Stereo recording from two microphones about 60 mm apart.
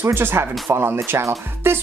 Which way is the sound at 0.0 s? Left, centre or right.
Right.